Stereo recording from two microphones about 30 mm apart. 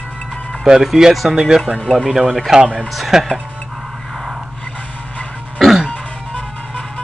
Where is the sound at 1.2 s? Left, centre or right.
Centre.